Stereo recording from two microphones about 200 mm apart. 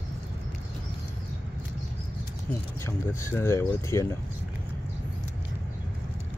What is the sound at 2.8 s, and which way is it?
Speech, 10° left (ahead or behind).